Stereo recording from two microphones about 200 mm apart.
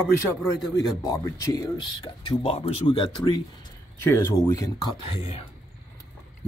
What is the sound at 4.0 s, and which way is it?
Speech, 15° left (ahead or behind).